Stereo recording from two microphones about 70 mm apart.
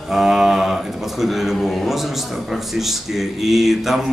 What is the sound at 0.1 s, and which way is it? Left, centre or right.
Speech, centre.